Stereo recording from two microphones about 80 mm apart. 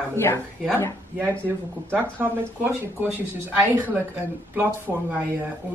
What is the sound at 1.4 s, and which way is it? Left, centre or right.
Speech, right.